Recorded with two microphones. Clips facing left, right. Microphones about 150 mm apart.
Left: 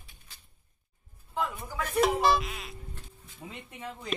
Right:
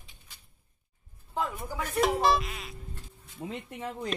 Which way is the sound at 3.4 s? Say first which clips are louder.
Right 7 dB; 35° right (ahead or behind).